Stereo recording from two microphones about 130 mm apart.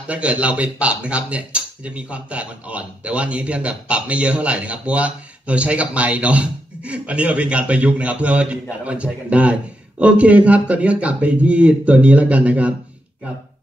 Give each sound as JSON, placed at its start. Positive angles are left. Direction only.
{"t": 0.1, "sound": "speech", "side_deg": -10}